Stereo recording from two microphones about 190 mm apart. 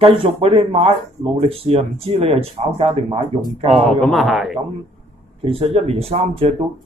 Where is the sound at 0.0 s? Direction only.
30° right (ahead or behind).